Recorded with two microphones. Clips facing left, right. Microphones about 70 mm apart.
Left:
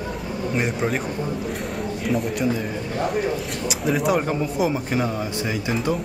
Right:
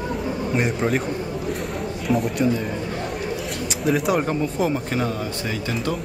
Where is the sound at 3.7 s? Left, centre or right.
Centre.